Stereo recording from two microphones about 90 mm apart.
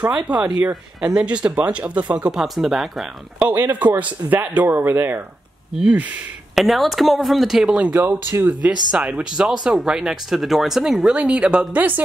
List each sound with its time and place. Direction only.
0.6 s speech: 10° right (ahead or behind)
3.3 s speech: 20° right (ahead or behind)
6.5 s speech: centre (ahead or behind)
7.9 s speech: 20° right (ahead or behind)
8.9 s speech: 10° right (ahead or behind)